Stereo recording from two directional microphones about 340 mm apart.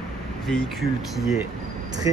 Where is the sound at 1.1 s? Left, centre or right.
Centre.